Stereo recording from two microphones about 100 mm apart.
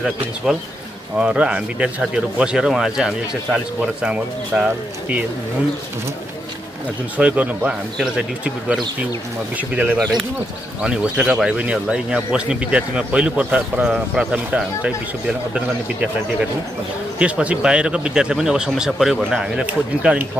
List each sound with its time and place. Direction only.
1.1 s speech: 10° right (ahead or behind)
7.2 s speech: 10° right (ahead or behind)
9.6 s speech: 15° right (ahead or behind)